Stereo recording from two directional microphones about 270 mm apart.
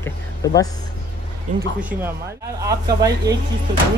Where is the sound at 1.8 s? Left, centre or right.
Centre.